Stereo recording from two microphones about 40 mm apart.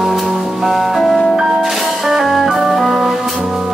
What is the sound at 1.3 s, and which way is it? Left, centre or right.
Organ, centre.